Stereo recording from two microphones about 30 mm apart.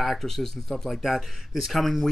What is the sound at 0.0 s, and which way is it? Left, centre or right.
Speech, centre.